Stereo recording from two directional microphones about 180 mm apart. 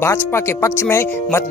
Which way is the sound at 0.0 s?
15° left (ahead or behind).